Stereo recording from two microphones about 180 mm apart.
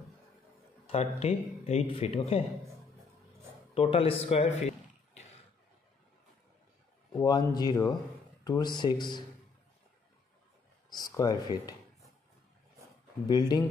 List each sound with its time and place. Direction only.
0.8 s speech: 35° left (ahead or behind)
3.7 s speech: 30° left (ahead or behind)
7.2 s speech: 20° left (ahead or behind)
10.9 s speech: 20° left (ahead or behind)
13.3 s speech: 25° left (ahead or behind)